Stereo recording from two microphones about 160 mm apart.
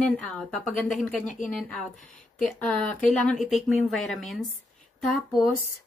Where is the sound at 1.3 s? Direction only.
55° left (ahead or behind).